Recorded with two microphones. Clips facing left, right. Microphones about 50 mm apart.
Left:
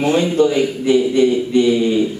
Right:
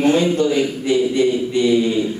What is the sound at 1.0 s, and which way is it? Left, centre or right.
Speech, centre.